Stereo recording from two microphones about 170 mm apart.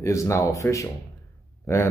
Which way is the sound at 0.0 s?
15° left (ahead or behind).